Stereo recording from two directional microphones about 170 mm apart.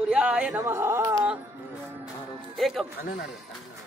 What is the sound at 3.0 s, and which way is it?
Speech, 60° left (ahead or behind).